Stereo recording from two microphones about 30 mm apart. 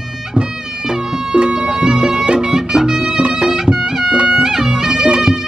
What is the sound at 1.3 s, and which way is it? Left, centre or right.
Music, right.